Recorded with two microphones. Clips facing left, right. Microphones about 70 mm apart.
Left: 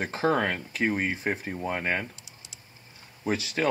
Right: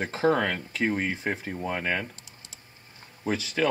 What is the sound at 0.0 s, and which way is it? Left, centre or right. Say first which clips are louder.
Speech: right 1 dB; centre.